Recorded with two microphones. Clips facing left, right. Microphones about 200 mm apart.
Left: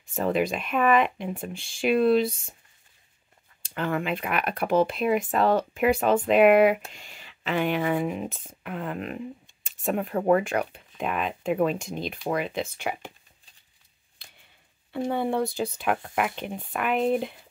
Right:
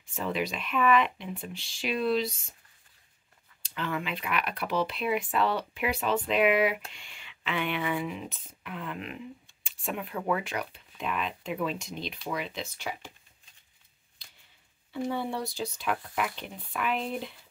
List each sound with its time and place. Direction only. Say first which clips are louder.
0.1 s speech: left 7 dB; 45° left (ahead or behind)
3.6 s speech: left 6 dB; 50° left (ahead or behind)
6.9 s speech: left 4 dB; 40° left (ahead or behind)
14.2 s a sound: left 5 dB; 55° left (ahead or behind)
14.9 s speech: left 5 dB; 55° left (ahead or behind)